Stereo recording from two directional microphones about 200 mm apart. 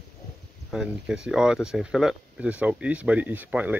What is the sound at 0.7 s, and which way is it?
Speech, 5° right (ahead or behind).